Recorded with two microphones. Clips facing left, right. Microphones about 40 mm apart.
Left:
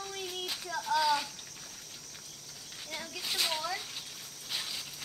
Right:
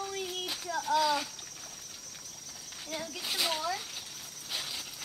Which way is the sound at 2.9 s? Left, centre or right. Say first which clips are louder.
Right 1 dB; centre.